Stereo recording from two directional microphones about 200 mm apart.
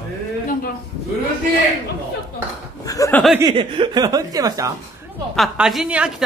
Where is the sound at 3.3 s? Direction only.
25° right (ahead or behind).